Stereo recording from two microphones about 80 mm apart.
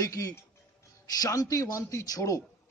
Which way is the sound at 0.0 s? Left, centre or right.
Left.